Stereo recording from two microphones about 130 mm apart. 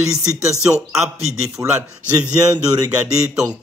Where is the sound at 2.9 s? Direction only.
10° right (ahead or behind).